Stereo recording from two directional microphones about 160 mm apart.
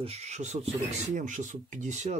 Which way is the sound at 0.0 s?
45° right (ahead or behind).